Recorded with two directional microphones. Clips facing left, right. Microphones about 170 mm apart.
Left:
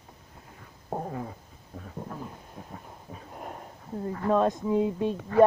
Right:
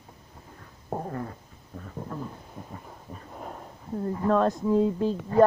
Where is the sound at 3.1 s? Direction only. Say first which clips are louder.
Right 1 dB; 5° left (ahead or behind).